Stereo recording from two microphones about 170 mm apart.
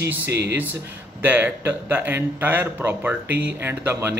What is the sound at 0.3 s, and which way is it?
Speech, 80° right.